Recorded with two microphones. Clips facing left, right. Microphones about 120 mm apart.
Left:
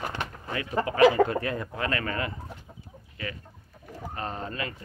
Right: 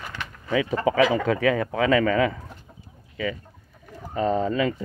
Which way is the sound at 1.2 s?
90° right.